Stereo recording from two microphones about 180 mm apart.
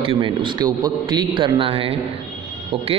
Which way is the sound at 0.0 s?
30° right (ahead or behind).